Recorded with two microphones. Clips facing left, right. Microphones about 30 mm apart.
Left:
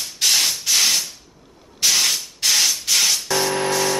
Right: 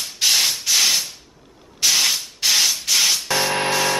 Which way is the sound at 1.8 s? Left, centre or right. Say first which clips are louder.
Even; centre.